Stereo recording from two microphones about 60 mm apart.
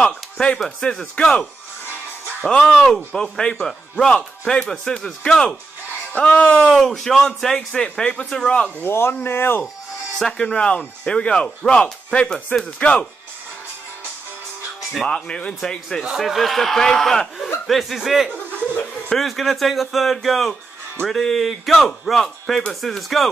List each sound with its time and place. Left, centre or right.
0.0 s a sound: centre
0.7 s speech: centre
2.7 s speech: centre
6.1 s speech: left
6.7 s speech: centre
8.7 s speech: left
10.1 s speech: centre
14.8 s music: centre
15.0 s speech: centre